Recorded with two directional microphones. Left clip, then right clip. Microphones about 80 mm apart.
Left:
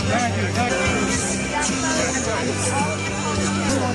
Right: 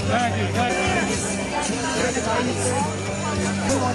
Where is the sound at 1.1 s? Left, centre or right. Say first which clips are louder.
Left 2 dB; left.